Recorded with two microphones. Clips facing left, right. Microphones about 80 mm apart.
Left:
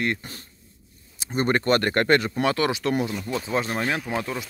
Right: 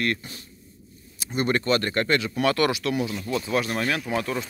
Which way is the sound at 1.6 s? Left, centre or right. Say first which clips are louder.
Left 3 dB; left.